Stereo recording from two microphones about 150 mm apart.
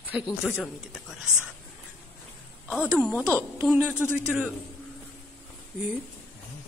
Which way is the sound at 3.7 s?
15° right (ahead or behind).